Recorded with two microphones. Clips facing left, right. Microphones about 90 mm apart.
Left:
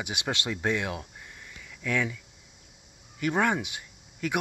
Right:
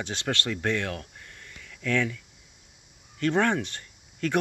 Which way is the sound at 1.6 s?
15° left (ahead or behind).